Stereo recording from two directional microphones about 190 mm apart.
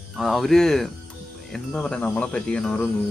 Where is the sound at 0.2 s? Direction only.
Centre (ahead or behind).